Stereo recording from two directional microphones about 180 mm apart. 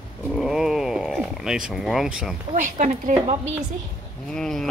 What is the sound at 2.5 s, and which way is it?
Speech, 40° right (ahead or behind).